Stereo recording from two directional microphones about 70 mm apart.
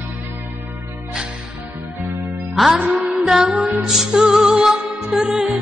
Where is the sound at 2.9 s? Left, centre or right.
Centre.